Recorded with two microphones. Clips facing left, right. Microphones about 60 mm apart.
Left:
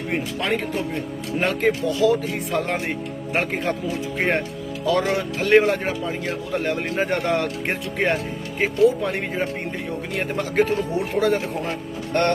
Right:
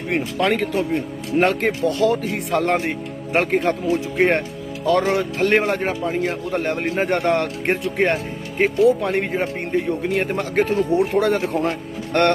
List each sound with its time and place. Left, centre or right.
0.1 s speech: right
1.4 s speech: right
3.3 s speech: right
6.5 s speech: right
11.6 s speech: right